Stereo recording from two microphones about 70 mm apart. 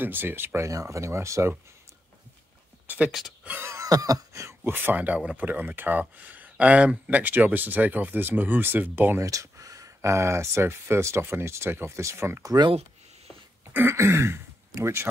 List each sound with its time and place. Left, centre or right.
0.0 s speech: right
0.7 s speech: right
3.1 s speech: centre
3.6 s a sound: right
4.7 s speech: right
9.2 s speech: right
13.7 s speech: right